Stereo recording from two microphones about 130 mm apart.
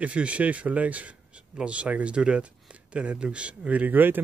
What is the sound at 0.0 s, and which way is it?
A man's voice, 10° right (ahead or behind).